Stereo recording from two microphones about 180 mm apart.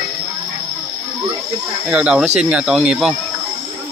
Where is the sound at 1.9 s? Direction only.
5° right (ahead or behind).